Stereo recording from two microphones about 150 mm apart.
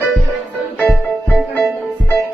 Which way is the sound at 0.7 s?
10° left (ahead or behind).